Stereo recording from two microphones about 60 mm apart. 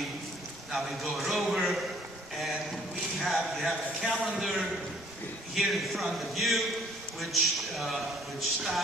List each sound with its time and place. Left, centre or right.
0.7 s a man's voice: centre
1.1 s a sound: centre
3.2 s a sound: centre
4.2 s a man's voice: centre
5.7 s a man's voice: centre
7.7 s a man's voice: centre